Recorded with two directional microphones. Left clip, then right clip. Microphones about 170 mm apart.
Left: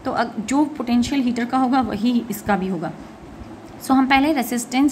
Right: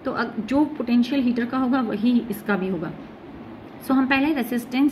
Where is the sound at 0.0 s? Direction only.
30° left (ahead or behind).